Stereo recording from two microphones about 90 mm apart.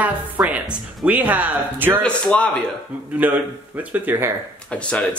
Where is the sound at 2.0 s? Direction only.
15° left (ahead or behind).